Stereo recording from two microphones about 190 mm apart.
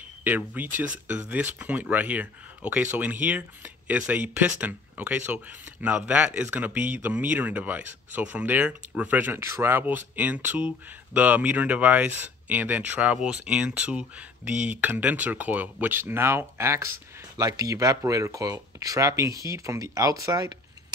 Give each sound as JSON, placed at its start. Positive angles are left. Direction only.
{"t": 0.2, "sound": "speech", "side_deg": -10}